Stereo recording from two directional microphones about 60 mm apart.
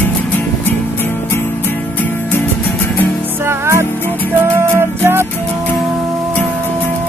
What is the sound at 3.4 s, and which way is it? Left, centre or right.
Music, right.